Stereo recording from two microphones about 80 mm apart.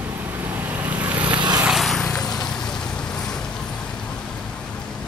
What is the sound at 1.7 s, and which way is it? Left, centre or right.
Vehicle, centre.